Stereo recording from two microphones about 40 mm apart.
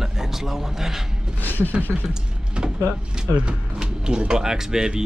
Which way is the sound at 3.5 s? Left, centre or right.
Right.